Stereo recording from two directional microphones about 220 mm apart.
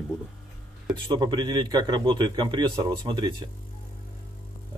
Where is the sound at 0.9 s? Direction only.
20° right (ahead or behind).